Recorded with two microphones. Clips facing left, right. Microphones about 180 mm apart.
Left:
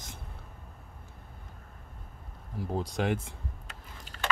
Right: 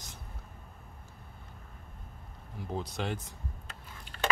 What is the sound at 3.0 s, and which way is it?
Speech, 50° left (ahead or behind).